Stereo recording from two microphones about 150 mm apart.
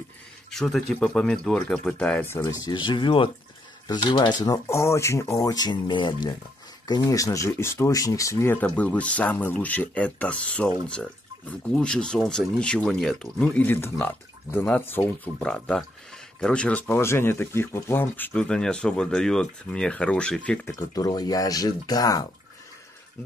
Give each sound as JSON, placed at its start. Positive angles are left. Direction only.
{"t": 0.5, "sound": "speech", "side_deg": 0}
{"t": 2.4, "sound": "speech", "side_deg": 25}
{"t": 20.9, "sound": "speech", "side_deg": 25}